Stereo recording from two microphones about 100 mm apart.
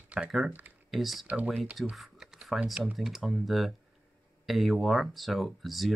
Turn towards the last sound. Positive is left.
turn(degrees=0)  # may be behind; listen again after turning